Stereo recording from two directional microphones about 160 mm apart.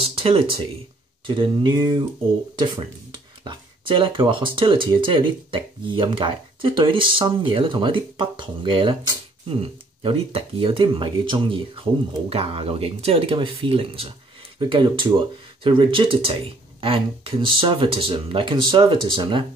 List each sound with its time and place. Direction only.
0.0 s speech: 35° right (ahead or behind)
3.4 s speech: 30° right (ahead or behind)